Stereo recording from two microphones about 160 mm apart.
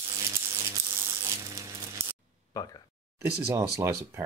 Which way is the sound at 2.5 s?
20° left (ahead or behind).